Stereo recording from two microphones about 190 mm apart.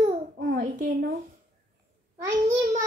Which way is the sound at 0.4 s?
50° right (ahead or behind).